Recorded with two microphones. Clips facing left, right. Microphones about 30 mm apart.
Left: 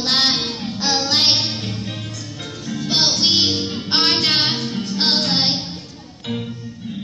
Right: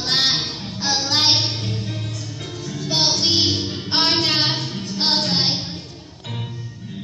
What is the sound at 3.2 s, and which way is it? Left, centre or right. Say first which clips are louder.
Music: left 2 dB; left.